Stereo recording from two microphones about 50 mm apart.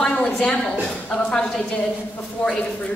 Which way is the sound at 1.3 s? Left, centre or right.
Centre.